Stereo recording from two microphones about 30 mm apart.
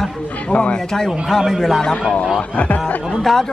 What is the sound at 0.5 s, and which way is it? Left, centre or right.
Speech, left.